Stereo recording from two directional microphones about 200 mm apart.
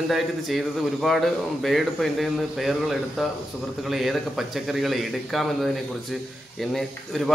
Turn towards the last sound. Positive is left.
turn(degrees=0)  # may be behind; listen again after turning